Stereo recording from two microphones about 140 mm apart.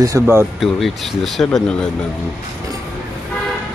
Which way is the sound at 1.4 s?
10° left (ahead or behind).